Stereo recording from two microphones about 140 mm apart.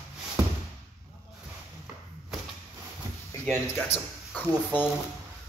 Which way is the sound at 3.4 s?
15° left (ahead or behind).